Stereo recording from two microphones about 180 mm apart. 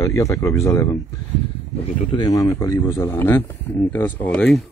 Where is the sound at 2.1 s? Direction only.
20° left (ahead or behind).